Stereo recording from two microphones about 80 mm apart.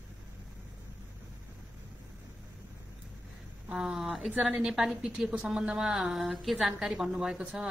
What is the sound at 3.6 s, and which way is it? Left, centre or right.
A woman's voice, centre.